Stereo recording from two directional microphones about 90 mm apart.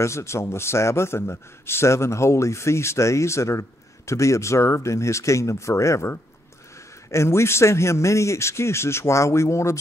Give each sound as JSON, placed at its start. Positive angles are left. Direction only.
{"t": 0.0, "sound": "a man's voice", "side_deg": 30}